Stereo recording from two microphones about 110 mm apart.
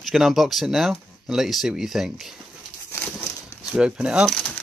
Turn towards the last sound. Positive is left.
turn(degrees=5)  # may be behind; listen again after turning